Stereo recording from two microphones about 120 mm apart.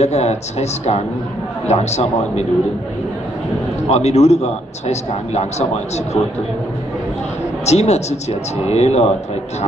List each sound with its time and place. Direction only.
0.0 s a man's voice: 65° left (ahead or behind)
3.9 s a man's voice: 65° left (ahead or behind)
7.6 s a man's voice: 65° left (ahead or behind)